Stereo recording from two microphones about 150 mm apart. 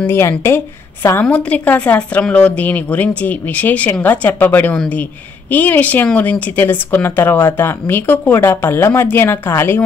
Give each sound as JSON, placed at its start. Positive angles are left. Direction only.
{"t": 0.0, "sound": "speech", "side_deg": 15}